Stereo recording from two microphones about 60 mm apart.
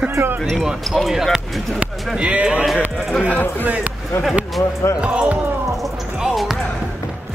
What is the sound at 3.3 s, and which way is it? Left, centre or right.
Speech, left.